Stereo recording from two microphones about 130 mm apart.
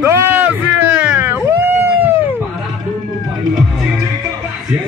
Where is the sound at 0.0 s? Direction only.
15° right (ahead or behind).